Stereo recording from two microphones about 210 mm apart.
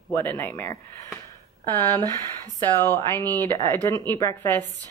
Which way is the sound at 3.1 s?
15° right (ahead or behind).